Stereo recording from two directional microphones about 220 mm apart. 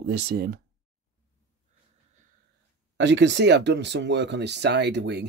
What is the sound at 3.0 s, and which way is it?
Speech, 55° right (ahead or behind).